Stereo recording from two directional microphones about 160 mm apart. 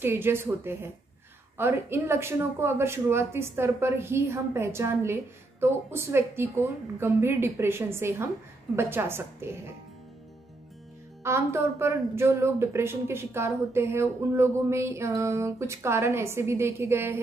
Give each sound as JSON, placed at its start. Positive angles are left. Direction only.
{"t": 0.0, "sound": "speech", "side_deg": -15}
{"t": 11.2, "sound": "speech", "side_deg": -15}